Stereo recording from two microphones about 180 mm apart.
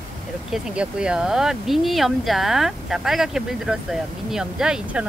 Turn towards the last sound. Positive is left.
turn(degrees=-5)  # may be behind; listen again after turning